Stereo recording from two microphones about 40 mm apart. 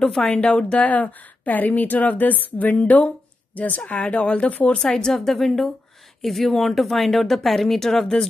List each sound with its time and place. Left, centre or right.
0.0 s a woman's voice: centre
0.5 s speech: left
4.7 s a woman's voice: centre